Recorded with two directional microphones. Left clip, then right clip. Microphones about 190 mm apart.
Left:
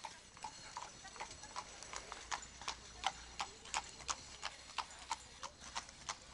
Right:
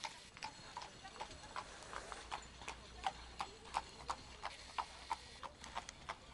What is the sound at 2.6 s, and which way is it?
Horse, 30° left (ahead or behind).